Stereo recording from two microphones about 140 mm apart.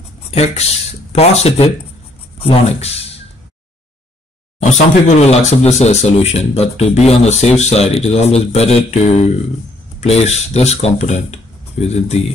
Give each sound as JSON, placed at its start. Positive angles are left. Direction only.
{"t": 0.3, "sound": "speech", "side_deg": 50}
{"t": 4.6, "sound": "speech", "side_deg": 55}